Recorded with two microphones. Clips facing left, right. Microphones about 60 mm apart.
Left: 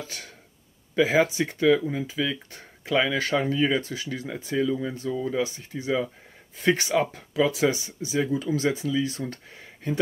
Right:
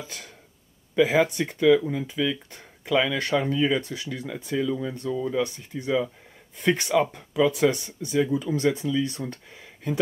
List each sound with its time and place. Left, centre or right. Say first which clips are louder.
0.0 s speech: left 1 dB; centre